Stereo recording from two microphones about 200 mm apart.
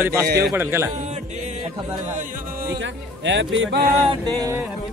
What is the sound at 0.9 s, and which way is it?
Music, 35° right (ahead or behind).